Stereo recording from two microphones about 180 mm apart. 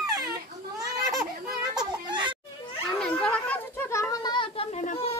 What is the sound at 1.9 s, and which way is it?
Children playing, 25° right (ahead or behind).